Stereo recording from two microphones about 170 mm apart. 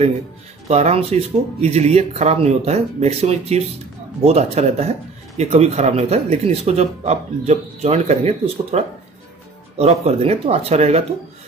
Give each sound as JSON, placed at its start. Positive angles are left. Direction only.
{"t": 0.7, "sound": "speech", "side_deg": -40}